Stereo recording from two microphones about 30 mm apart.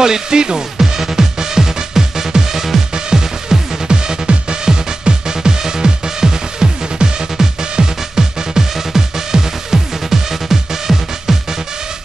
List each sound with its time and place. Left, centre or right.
0.0 s speech: right
0.7 s music: centre
2.9 s music: right